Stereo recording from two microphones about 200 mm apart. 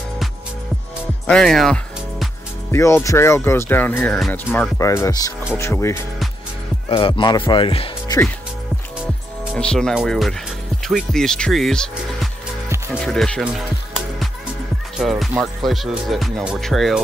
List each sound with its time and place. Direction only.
1.2 s music: 5° left (ahead or behind)
2.7 s speech: 15° left (ahead or behind)
6.9 s speech: 25° left (ahead or behind)
9.0 s music: 5° right (ahead or behind)
10.8 s speech: centre (ahead or behind)
15.0 s speech: centre (ahead or behind)